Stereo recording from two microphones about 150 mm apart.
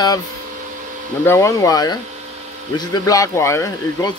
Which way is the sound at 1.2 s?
20° left (ahead or behind).